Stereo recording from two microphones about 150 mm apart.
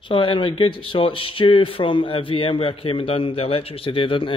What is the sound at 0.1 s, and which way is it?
Speech, 35° left (ahead or behind).